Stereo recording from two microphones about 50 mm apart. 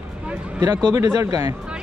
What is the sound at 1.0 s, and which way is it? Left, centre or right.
Speech, right.